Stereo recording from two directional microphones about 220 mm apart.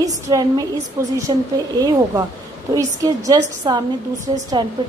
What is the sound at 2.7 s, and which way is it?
A woman's voice, 15° right (ahead or behind).